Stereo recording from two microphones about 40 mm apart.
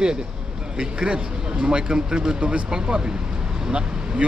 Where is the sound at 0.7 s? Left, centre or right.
Right.